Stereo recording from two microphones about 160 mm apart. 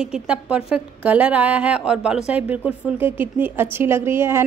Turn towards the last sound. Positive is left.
turn(degrees=-15)  # may be behind; listen again after turning